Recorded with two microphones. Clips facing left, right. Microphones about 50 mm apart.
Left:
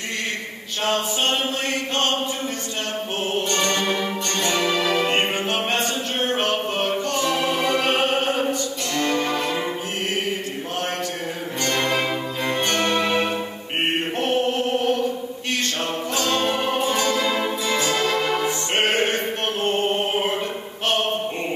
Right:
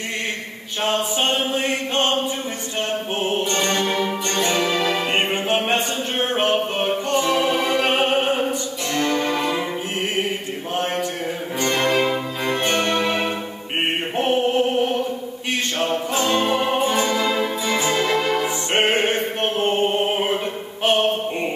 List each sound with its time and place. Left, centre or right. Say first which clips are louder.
0.8 s a sound: right 1 dB; centre
3.2 s music: right 1 dB; right
3.9 s music: right 2 dB; centre
9.3 s music: right 2 dB; centre
11.8 s music: right 4 dB; centre
12.4 s music: right 1 dB; centre
14.1 s music: right 6 dB; centre
18.2 s music: right 1 dB; centre
18.7 s music: right 3 dB; centre